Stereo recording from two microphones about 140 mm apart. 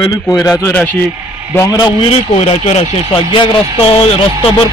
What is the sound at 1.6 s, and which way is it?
Speech, 25° left (ahead or behind).